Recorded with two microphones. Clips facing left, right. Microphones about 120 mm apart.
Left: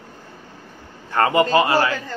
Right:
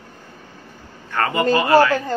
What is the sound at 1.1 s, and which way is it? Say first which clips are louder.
Speech: left 4 dB; 25° left (ahead or behind).